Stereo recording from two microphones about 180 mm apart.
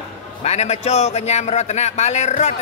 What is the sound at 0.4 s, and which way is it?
A man's voice, 35° left (ahead or behind).